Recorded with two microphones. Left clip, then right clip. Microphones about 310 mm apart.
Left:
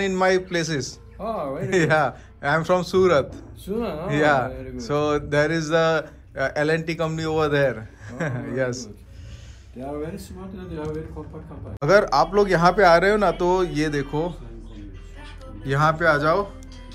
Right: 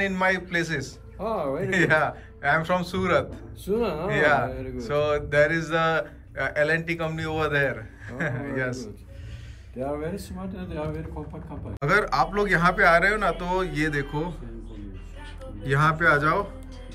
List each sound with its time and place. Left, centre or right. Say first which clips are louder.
0.0 s speech: left 3 dB; centre
1.2 s speech: even; centre
1.7 s speech: left 2 dB; centre
3.6 s speech: right 2 dB; centre
4.1 s speech: left 2 dB; centre
4.5 s speech: left 1 dB; centre
4.7 s speech: left 2 dB; centre
9.8 s speech: right 1 dB; centre
11.8 s speech: left 5 dB; centre
15.6 s speech: left 2 dB; centre